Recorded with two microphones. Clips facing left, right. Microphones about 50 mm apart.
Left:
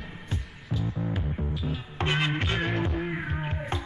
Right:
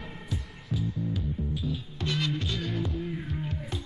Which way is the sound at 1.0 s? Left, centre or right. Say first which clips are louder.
Left 1 dB; left.